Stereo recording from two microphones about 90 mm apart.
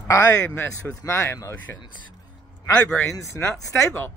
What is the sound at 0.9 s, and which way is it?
Speech, 30° left (ahead or behind).